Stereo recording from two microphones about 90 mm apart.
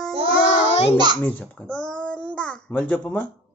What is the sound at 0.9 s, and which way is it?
Speech, 55° right (ahead or behind).